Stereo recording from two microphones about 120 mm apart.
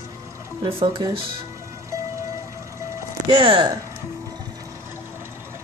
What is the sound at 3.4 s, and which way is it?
Speech, 50° right (ahead or behind).